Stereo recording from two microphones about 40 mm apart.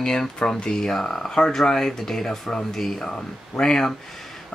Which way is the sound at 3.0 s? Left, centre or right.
Centre.